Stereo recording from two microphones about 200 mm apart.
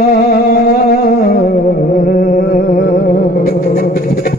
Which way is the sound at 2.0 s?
45° left (ahead or behind).